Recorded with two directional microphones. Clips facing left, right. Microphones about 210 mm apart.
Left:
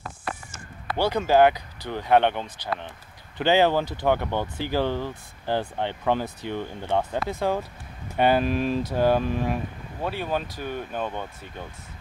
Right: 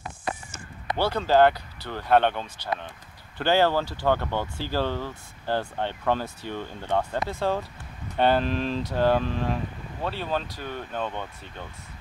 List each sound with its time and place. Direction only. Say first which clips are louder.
0.9 s speech: left 1 dB; 15° left (ahead or behind)